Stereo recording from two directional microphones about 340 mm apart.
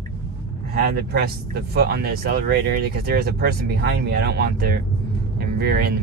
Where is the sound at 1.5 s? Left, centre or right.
Right.